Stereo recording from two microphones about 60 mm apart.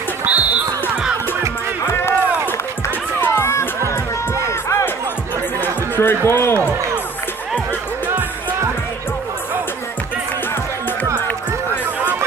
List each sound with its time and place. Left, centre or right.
0.2 s music: right
1.9 s run: left
3.2 s music: left
4.5 s music: left
5.6 s speech: left
11.1 s music: left